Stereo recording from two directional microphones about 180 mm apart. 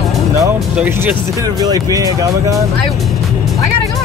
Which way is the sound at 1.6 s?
20° right (ahead or behind).